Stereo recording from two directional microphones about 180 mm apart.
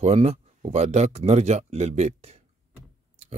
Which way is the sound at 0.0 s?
35° right (ahead or behind).